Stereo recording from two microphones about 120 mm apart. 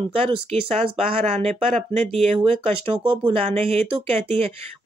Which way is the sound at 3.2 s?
55° right (ahead or behind).